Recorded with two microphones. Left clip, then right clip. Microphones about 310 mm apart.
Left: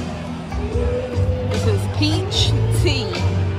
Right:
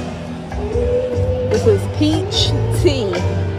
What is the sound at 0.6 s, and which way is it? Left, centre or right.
Music, centre.